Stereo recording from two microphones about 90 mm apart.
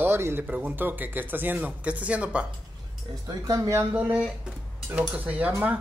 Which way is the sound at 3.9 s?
15° right (ahead or behind).